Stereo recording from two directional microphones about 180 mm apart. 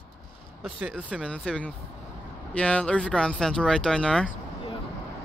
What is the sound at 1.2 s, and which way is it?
Speech, 5° left (ahead or behind).